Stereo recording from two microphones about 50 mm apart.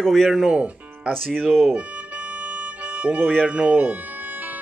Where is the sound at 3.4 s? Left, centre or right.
Right.